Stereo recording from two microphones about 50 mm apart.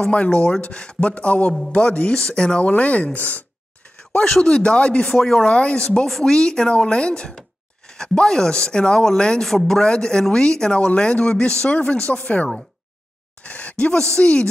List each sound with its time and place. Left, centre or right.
0.1 s speech: left
2.7 s speech: left
4.2 s speech: centre
6.0 s speech: centre